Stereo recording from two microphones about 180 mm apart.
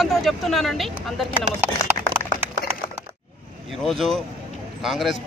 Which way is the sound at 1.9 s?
10° right (ahead or behind).